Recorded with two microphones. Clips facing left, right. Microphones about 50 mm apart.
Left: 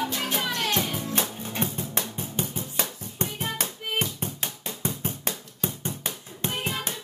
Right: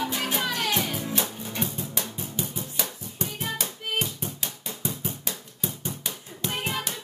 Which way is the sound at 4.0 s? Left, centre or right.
Left.